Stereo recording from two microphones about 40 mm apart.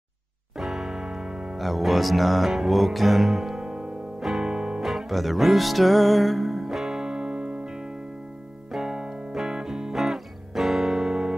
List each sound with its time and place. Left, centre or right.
0.6 s music: centre
1.6 s music: centre
3.6 s music: centre
4.2 s music: centre
4.5 s music: centre
4.8 s music: centre; by 7.7 s right
8.7 s keyboard: centre
9.5 s music: centre
9.9 s music: centre